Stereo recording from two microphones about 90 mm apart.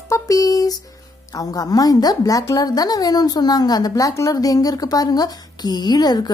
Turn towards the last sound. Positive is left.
turn(degrees=50)  # may be behind; listen again after turning